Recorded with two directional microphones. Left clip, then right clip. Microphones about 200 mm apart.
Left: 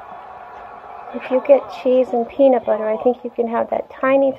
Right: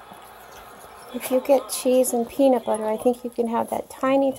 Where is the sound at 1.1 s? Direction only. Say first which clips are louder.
Left 6 dB; 30° right (ahead or behind).